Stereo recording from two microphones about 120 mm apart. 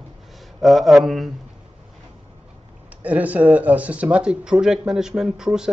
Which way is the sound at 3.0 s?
10° right (ahead or behind).